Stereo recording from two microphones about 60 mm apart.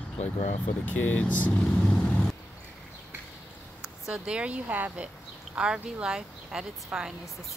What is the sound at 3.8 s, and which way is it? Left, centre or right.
Speech, centre.